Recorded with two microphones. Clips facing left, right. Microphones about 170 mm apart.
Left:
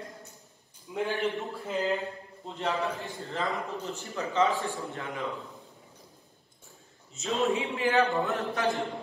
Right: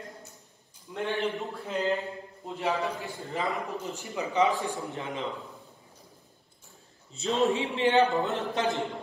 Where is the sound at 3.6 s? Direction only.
15° right (ahead or behind).